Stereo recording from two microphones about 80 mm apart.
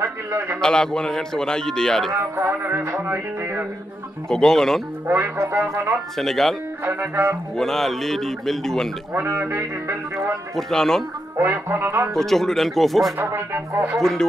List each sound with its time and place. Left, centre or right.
0.0 s a man's voice: right
0.6 s a man's voice: centre
2.1 s music: right
4.3 s a man's voice: centre
5.0 s music: right
6.1 s a man's voice: centre
6.8 s music: right
7.5 s a man's voice: centre
9.4 s music: right
10.5 s a man's voice: centre
11.3 s music: right
12.1 s a man's voice: centre
13.2 s speech: right